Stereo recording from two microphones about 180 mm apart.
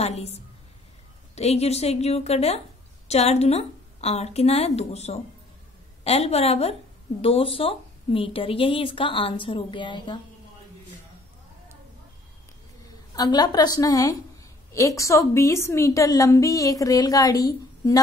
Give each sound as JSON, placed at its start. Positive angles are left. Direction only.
{"t": 0.0, "sound": "a woman's voice", "side_deg": 35}
{"t": 13.1, "sound": "speech", "side_deg": 20}